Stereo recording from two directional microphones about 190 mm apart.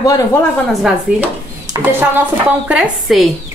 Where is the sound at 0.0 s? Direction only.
15° left (ahead or behind).